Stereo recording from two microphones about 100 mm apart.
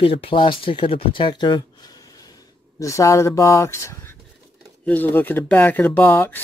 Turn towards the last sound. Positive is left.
turn(degrees=20)  # may be behind; listen again after turning